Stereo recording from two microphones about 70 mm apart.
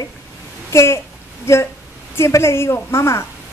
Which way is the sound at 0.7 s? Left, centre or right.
Left.